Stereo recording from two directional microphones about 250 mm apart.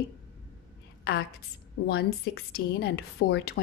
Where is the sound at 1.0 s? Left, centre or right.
Left.